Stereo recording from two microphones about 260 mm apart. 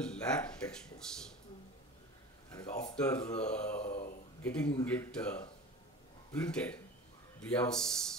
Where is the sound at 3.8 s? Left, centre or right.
Left.